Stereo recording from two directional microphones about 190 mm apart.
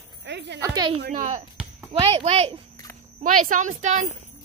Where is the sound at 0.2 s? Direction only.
65° right (ahead or behind).